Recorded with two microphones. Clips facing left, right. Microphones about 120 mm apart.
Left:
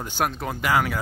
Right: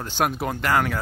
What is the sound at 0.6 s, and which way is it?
Speech, 10° left (ahead or behind).